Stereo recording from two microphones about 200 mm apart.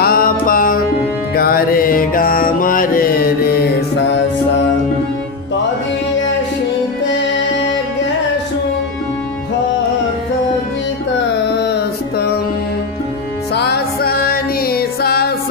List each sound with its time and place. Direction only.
0.0 s music: 45° left (ahead or behind)
11.6 s a sound: 55° left (ahead or behind)
13.6 s music: 50° left (ahead or behind)